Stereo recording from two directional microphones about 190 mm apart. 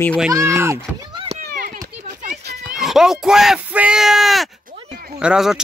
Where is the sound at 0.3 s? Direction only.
15° right (ahead or behind).